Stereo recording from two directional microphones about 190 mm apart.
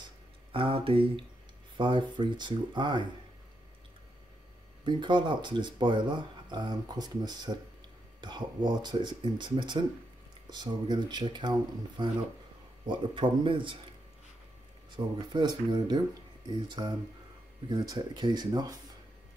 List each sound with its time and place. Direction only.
0.5 s speech: 30° right (ahead or behind)
4.8 s speech: 25° right (ahead or behind)
15.0 s speech: 20° right (ahead or behind)